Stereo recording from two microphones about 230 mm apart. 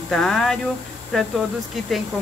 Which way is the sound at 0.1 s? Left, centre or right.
Centre.